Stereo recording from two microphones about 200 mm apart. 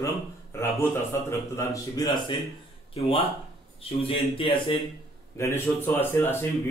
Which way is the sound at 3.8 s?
30° left (ahead or behind).